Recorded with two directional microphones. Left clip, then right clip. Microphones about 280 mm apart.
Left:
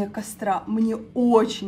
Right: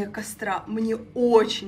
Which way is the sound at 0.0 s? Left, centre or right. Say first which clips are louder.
Left 3 dB; left.